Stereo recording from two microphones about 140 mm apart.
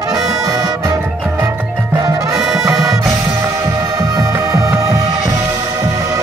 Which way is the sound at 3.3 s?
20° right (ahead or behind).